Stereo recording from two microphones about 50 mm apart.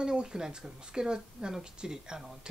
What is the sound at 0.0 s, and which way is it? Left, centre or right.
Speech, centre.